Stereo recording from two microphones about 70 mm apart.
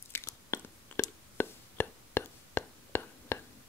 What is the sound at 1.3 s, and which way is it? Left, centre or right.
Whispering, left.